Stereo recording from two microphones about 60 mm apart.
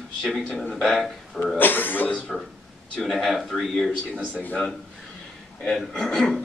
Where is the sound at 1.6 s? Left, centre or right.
Left.